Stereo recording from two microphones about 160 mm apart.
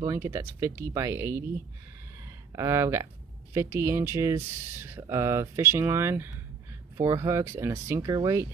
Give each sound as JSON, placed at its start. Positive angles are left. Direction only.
{"t": 0.0, "sound": "speech", "side_deg": -20}
{"t": 2.5, "sound": "speech", "side_deg": -20}